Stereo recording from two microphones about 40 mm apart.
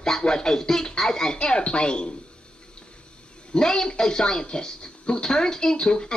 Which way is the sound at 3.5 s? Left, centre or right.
Centre.